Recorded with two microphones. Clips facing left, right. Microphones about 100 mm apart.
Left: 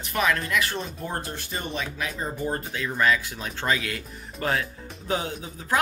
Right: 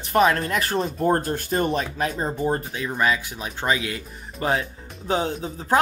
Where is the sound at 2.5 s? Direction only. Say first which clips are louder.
Right 4 dB; 20° right (ahead or behind).